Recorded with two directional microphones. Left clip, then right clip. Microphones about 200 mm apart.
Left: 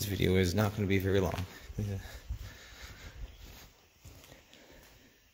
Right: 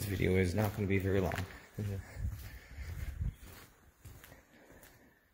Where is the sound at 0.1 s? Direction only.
20° left (ahead or behind).